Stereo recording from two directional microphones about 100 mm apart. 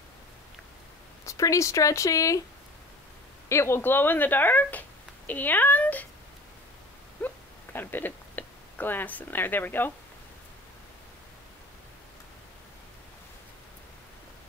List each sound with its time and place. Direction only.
1.2 s speech: 35° left (ahead or behind)
3.4 s speech: 25° left (ahead or behind)
7.2 s a sound: 20° left (ahead or behind)